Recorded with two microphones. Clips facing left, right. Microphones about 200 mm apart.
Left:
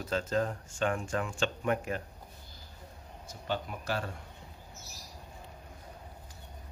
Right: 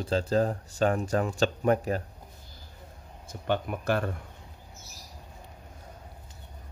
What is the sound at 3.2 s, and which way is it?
Speech, 55° right (ahead or behind).